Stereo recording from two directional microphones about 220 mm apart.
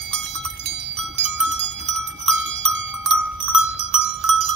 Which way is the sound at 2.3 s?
Centre (ahead or behind).